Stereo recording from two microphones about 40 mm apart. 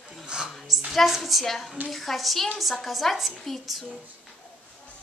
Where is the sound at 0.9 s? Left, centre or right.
Centre.